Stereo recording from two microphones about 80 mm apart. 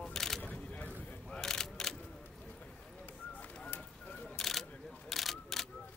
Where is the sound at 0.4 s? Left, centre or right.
Centre.